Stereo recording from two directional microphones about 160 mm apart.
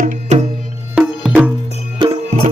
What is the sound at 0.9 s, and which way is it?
Music, centre (ahead or behind).